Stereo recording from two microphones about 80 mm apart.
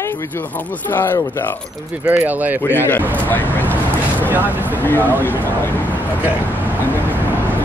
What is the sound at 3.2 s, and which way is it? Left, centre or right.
Vehicle, left.